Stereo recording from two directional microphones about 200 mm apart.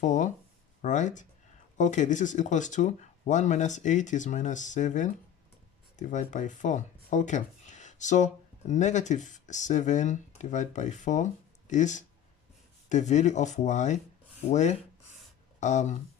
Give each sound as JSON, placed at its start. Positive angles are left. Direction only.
{"t": 0.0, "sound": "speech", "side_deg": 40}